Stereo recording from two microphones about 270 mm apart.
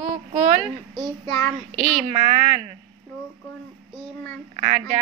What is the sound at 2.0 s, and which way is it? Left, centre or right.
Speech, right.